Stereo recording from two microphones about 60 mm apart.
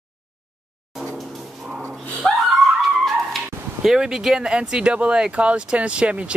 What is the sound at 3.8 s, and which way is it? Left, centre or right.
Speech, centre.